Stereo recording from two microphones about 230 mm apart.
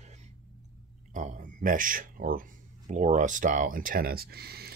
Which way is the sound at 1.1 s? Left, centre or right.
Right.